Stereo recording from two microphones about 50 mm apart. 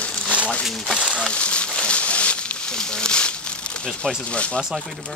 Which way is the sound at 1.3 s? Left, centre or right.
Left.